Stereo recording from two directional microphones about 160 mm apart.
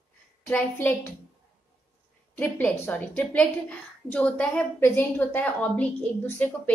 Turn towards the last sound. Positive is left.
turn(degrees=10)  # may be behind; listen again after turning